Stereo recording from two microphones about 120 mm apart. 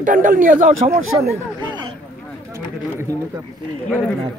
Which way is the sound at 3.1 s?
25° right (ahead or behind).